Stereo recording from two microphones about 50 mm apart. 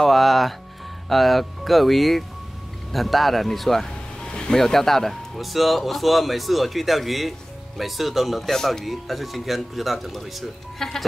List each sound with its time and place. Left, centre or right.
0.0 s speech: centre